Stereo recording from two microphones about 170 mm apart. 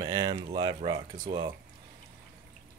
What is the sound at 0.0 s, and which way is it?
Speech, 25° right (ahead or behind).